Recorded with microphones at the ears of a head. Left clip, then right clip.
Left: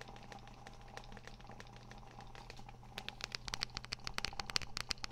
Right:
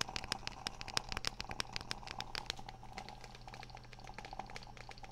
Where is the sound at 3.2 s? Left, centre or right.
Left.